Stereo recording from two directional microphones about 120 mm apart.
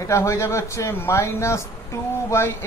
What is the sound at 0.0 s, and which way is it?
Speech, 25° left (ahead or behind).